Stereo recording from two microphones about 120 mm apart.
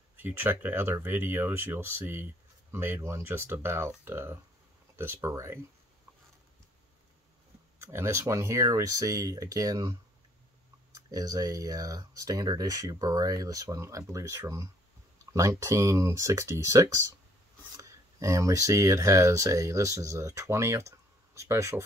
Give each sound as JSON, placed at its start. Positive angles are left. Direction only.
{"t": 0.1, "sound": "speech", "side_deg": -15}
{"t": 7.8, "sound": "speech", "side_deg": -20}